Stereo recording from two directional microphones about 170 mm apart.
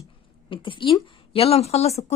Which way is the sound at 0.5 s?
30° left (ahead or behind).